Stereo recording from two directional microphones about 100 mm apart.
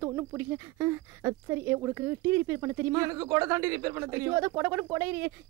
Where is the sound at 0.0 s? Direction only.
25° right (ahead or behind).